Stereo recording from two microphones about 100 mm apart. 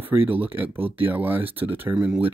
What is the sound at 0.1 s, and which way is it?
Speech, 20° right (ahead or behind).